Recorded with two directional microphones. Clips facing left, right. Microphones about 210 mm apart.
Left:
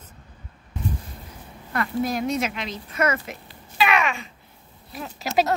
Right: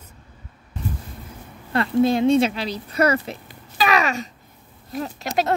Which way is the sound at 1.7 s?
30° right (ahead or behind).